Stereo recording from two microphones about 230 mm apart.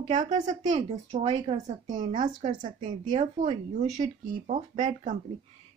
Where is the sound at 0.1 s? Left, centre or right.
Right.